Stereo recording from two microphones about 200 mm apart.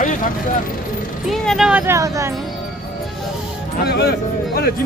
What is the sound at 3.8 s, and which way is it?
Speech, 55° left (ahead or behind).